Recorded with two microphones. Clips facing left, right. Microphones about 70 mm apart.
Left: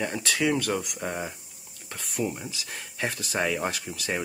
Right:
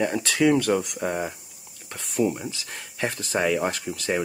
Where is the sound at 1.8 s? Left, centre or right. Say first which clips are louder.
Right 6 dB; centre.